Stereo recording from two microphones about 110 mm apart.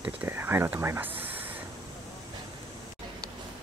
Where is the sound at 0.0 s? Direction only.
20° right (ahead or behind).